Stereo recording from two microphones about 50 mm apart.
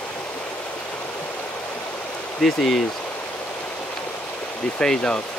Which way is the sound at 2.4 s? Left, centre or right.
Centre.